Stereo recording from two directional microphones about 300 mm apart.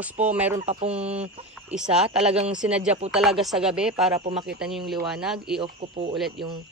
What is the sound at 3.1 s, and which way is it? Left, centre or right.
Speech, centre.